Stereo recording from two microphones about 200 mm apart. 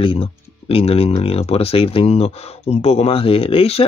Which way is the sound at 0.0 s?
25° left (ahead or behind).